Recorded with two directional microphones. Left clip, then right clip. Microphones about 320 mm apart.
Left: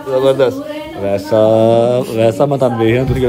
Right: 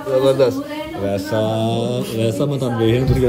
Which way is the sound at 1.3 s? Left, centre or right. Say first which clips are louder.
Left 13 dB; centre.